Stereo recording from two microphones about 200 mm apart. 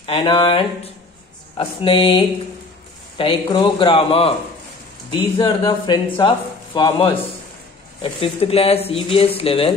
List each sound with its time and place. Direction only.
0.0 s speech: 25° left (ahead or behind)